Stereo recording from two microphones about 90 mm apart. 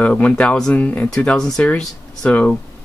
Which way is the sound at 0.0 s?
15° left (ahead or behind).